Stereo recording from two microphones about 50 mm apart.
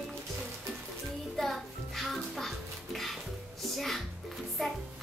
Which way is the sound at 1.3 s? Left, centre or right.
Centre.